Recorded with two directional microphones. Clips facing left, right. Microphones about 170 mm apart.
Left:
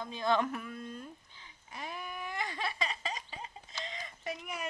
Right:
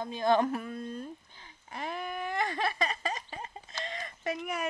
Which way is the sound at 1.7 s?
55° right (ahead or behind).